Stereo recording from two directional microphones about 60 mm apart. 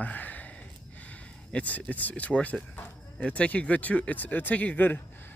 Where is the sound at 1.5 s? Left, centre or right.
Left.